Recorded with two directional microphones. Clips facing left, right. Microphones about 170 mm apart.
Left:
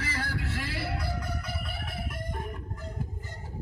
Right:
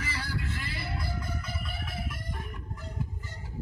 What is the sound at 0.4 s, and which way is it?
Music, 90° left.